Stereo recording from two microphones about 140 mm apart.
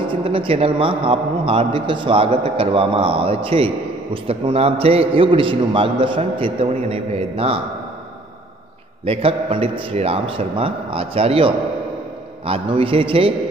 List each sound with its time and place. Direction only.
0.1 s a man's voice: 40° right (ahead or behind)
9.0 s a man's voice: 40° right (ahead or behind)